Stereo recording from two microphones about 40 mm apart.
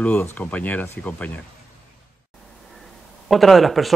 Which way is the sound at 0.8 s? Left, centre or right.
Left.